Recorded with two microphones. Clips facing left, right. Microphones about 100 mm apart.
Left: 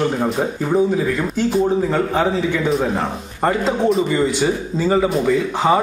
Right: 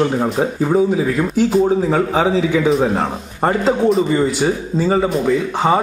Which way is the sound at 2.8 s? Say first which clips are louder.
Right 3 dB; 20° right (ahead or behind).